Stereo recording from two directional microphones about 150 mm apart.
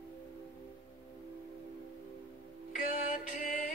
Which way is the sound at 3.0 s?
60° left (ahead or behind).